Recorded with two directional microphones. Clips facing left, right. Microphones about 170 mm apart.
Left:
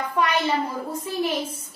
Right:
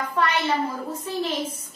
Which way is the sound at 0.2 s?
15° left (ahead or behind).